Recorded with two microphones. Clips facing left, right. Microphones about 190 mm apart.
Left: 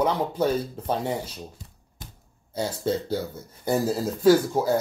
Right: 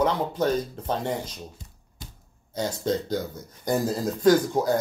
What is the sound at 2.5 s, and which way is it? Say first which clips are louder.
Speech: even; 10° left (ahead or behind).